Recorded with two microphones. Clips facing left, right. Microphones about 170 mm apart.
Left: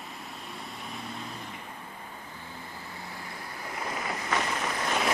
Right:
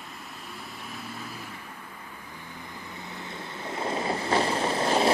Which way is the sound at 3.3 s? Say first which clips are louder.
Right 6 dB; 25° right (ahead or behind).